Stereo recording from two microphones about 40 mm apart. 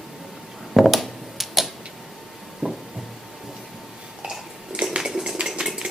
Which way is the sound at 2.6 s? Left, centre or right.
Right.